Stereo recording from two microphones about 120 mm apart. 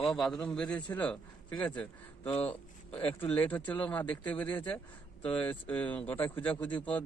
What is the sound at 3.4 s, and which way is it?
Speech, 15° left (ahead or behind).